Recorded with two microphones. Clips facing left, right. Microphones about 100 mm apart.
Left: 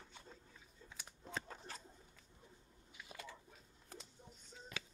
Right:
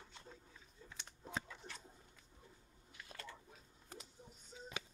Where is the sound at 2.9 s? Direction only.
5° left (ahead or behind).